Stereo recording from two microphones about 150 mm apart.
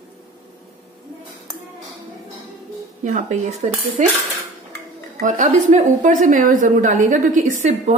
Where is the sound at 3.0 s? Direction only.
50° right (ahead or behind).